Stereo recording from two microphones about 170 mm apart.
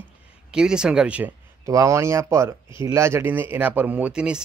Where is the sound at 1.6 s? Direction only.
20° right (ahead or behind).